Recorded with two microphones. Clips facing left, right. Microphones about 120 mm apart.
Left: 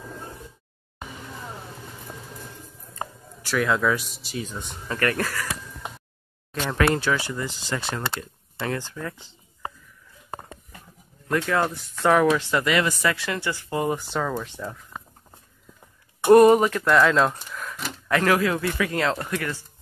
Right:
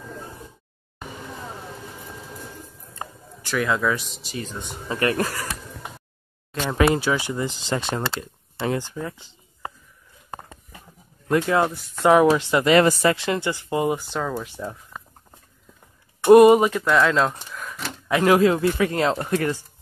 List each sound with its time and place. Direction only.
3.4 s speech: centre (ahead or behind)
4.8 s speech: 20° right (ahead or behind)
6.5 s speech: 5° right (ahead or behind)
11.2 s speech: 20° right (ahead or behind)
12.6 s speech: 35° right (ahead or behind); by 13.9 s 15° right (ahead or behind)
13.9 s speech: 5° right (ahead or behind)
16.3 s speech: 15° right (ahead or behind)
16.8 s speech: centre (ahead or behind)
17.5 s a sound: centre (ahead or behind)
18.0 s speech: 15° right (ahead or behind)